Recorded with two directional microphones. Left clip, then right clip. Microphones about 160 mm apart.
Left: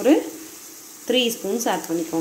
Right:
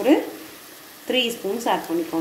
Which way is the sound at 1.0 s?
50° left (ahead or behind).